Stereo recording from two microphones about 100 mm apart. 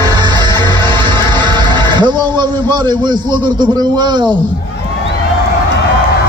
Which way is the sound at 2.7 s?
50° right (ahead or behind).